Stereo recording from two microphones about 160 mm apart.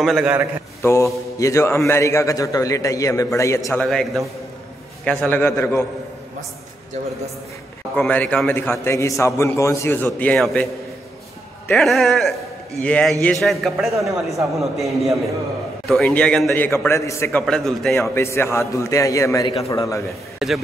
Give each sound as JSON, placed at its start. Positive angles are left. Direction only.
{"t": 0.0, "sound": "a man's voice", "side_deg": -5}
{"t": 0.8, "sound": "a man's voice", "side_deg": 20}
{"t": 3.8, "sound": "a man's voice", "side_deg": 0}
{"t": 7.9, "sound": "a man's voice", "side_deg": 10}
{"t": 18.1, "sound": "a man's voice", "side_deg": 15}
{"t": 20.3, "sound": "speech", "side_deg": 0}